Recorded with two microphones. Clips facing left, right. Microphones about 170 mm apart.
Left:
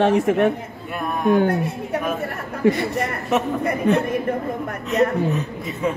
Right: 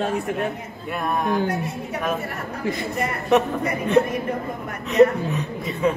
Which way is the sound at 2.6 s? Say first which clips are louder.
Left 8 dB; 70° left (ahead or behind).